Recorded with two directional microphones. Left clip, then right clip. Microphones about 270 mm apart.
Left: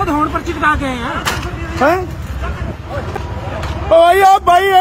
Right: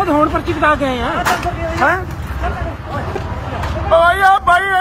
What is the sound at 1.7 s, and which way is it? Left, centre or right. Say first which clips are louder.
Speech: left 2 dB; left.